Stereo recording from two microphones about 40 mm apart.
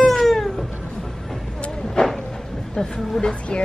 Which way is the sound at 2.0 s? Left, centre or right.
Left.